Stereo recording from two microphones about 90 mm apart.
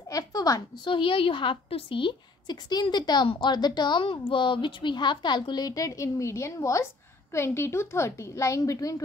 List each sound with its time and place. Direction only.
0.1 s a woman's voice: 45° left (ahead or behind)
0.8 s a woman's voice: 70° left (ahead or behind); by 9.0 s 35° left (ahead or behind)